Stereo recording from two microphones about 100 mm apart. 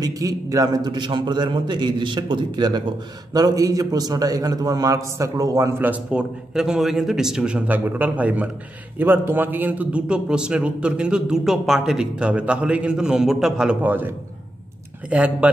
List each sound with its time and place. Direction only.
0.0 s a man's voice: 35° right (ahead or behind)
5.8 s a man's voice: 10° right (ahead or behind)
13.8 s a man's voice: 20° right (ahead or behind)